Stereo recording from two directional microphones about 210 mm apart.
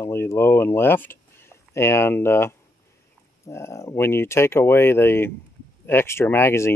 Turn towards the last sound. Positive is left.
turn(degrees=10)  # may be behind; listen again after turning